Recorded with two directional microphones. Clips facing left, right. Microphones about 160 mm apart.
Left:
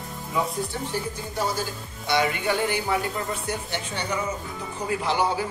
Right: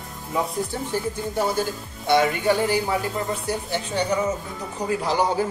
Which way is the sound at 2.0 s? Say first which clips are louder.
Right 5 dB; 45° right (ahead or behind).